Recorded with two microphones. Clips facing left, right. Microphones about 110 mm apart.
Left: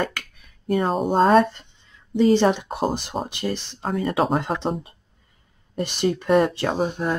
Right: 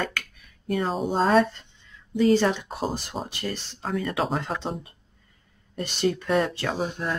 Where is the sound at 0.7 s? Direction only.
45° left (ahead or behind).